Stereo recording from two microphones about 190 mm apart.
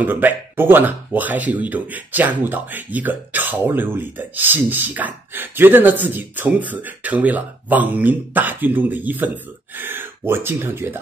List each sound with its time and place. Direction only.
0.0 s speech: 10° right (ahead or behind)